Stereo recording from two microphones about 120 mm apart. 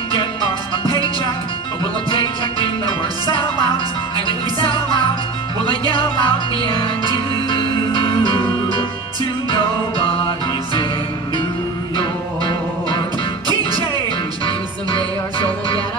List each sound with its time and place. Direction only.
2.0 s music: 45° left (ahead or behind)
4.6 s music: 45° left (ahead or behind)
9.5 s music: 45° left (ahead or behind)
12.0 s music: 45° left (ahead or behind)
15.0 s music: 50° left (ahead or behind)